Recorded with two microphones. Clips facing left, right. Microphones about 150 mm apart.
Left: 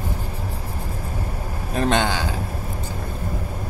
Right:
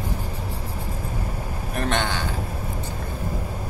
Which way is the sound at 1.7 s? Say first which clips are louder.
Left 5 dB; 90° left.